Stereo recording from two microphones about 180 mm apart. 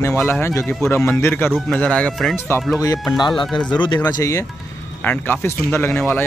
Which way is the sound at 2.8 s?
20° left (ahead or behind).